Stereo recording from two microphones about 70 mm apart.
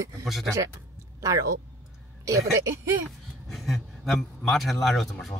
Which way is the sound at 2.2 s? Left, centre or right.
Right.